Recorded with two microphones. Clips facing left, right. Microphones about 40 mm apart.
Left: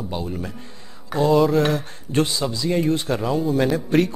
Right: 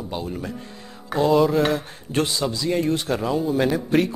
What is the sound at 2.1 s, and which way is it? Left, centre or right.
Speech, right.